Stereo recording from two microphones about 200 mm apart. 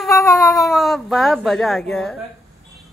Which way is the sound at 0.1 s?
15° left (ahead or behind).